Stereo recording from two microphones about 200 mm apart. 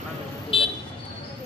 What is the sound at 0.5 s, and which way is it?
Vehicle, 25° left (ahead or behind).